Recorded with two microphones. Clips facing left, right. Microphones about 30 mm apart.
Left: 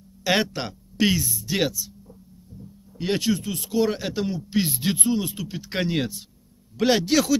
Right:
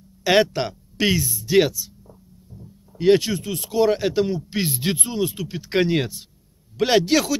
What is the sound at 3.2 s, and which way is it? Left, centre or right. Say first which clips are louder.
Speech: left 1 dB; right.